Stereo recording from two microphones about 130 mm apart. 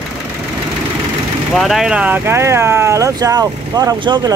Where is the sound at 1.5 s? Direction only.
Centre (ahead or behind).